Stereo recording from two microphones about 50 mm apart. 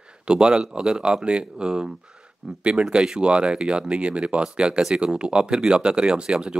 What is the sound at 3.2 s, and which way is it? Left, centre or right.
Speech, right.